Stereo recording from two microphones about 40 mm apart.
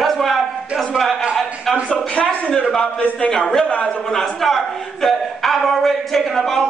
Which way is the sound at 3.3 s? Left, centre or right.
Centre.